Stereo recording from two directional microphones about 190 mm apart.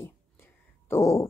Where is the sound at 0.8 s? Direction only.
15° left (ahead or behind).